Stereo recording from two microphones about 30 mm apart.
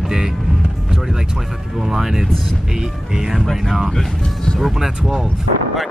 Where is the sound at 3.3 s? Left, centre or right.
Centre.